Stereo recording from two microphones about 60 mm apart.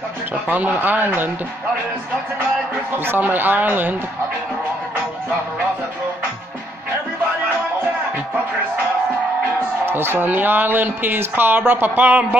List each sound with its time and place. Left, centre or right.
0.5 s speech: right
3.1 s speech: right
9.8 s speech: right